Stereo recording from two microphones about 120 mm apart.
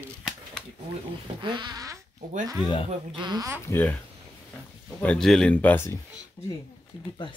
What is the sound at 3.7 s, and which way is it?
Speech, 15° left (ahead or behind).